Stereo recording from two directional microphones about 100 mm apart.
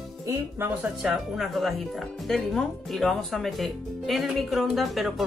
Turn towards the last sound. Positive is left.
turn(degrees=0)  # may be behind; listen again after turning